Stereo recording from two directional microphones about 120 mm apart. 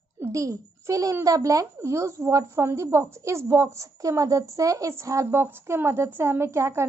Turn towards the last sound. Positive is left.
turn(degrees=-25)  # may be behind; listen again after turning